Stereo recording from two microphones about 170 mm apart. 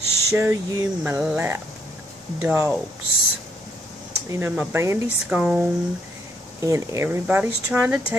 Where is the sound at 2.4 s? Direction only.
10° right (ahead or behind).